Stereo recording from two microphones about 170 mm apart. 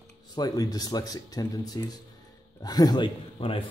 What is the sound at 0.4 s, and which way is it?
Speech, 20° left (ahead or behind).